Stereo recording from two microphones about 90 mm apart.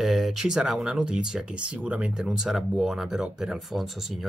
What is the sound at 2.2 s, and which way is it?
Speech, 5° right (ahead or behind).